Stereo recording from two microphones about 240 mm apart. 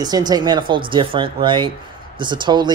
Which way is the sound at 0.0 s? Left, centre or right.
Centre.